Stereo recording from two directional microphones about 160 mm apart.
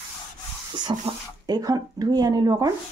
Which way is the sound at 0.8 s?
25° right (ahead or behind).